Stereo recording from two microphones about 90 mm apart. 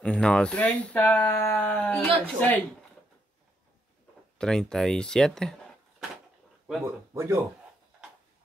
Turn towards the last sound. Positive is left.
turn(degrees=-30)  # may be behind; listen again after turning